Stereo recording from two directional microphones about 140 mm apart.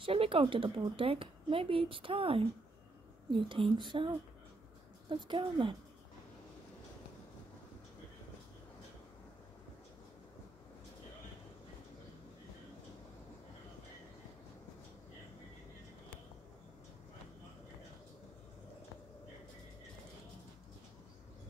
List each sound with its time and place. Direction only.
0.0 s a woman's voice: 40° right (ahead or behind)
5.1 s a woman's voice: 35° right (ahead or behind)